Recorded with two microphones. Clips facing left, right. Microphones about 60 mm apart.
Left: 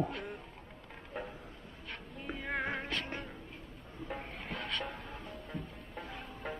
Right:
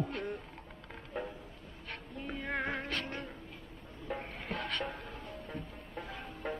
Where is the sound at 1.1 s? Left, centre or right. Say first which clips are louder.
Right 3 dB; centre.